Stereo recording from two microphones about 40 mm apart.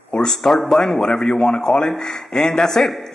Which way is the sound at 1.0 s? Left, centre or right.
Left.